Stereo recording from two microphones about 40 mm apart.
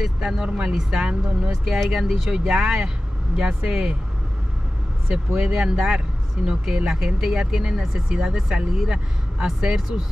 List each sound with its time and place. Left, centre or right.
0.0 s speech: centre
5.1 s speech: right